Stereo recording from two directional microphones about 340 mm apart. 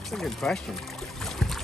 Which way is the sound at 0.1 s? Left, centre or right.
Centre.